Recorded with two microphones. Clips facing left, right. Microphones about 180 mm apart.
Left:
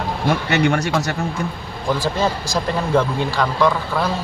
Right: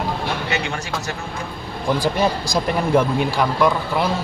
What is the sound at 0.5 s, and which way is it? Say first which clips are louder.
Speech: left 7 dB; 70° left (ahead or behind).